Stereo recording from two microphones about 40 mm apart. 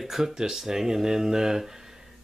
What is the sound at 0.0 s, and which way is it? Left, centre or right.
Speech, centre.